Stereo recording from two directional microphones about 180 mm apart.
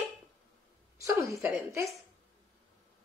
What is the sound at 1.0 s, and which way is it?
Speech, 15° right (ahead or behind).